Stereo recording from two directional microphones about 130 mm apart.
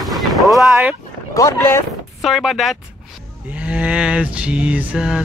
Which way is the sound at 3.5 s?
10° right (ahead or behind).